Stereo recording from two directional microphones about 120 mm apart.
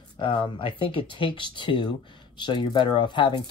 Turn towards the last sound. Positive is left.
turn(degrees=40)  # may be behind; listen again after turning